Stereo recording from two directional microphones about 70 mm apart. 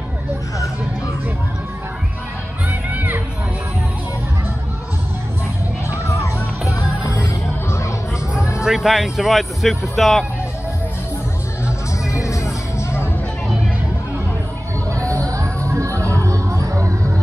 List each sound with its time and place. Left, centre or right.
2.9 s music: right
8.4 s music: left
8.6 s speech: centre
11.6 s music: left
14.9 s a sound: right
15.2 s music: right